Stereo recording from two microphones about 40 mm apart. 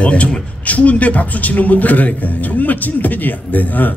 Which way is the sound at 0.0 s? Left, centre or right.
Left.